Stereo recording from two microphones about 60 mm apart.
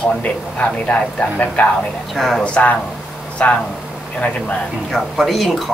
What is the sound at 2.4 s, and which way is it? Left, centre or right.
Speech, left.